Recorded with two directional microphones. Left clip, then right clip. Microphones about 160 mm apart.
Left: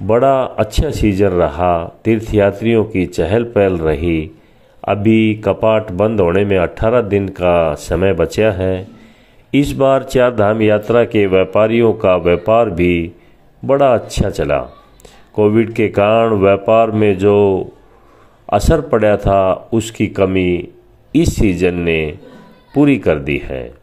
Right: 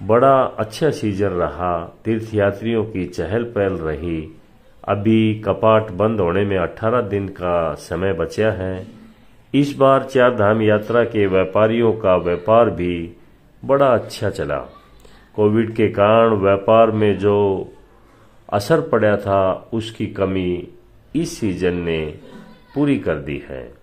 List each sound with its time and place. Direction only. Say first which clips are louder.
0.0 s speech: left 1 dB; 30° left (ahead or behind)